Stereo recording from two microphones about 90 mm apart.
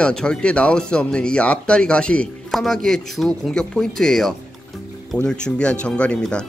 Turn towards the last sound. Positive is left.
turn(degrees=10)  # may be behind; listen again after turning